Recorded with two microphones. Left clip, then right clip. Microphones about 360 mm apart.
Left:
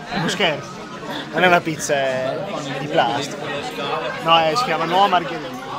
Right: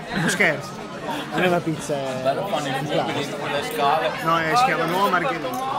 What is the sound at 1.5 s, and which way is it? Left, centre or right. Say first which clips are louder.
Speech: left 6 dB; left.